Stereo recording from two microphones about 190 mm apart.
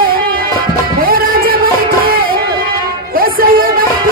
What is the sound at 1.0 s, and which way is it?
Music, 50° right (ahead or behind).